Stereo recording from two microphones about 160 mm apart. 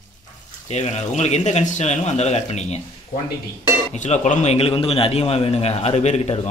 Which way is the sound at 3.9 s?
45° left (ahead or behind).